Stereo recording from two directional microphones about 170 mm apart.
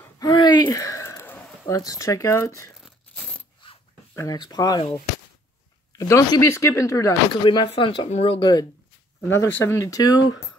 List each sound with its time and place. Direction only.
0.0 s a sound: 25° left (ahead or behind)
2.8 s coin: centre (ahead or behind)
4.1 s speech: 20° left (ahead or behind)
5.9 s speech: 20° left (ahead or behind)
7.4 s speech: 30° left (ahead or behind)
9.3 s speech: 15° left (ahead or behind)